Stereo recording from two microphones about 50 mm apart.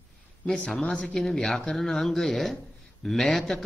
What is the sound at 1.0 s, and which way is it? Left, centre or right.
A man's voice, centre.